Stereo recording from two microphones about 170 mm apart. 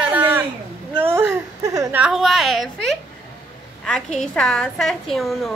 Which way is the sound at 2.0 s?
5° right (ahead or behind).